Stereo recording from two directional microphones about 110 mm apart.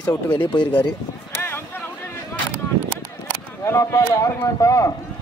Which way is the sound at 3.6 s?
25° left (ahead or behind).